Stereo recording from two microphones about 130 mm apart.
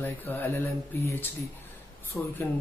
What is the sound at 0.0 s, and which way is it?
Speech, 15° left (ahead or behind).